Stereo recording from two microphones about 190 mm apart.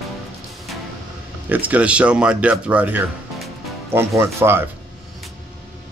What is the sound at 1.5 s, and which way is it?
Speech, 10° right (ahead or behind).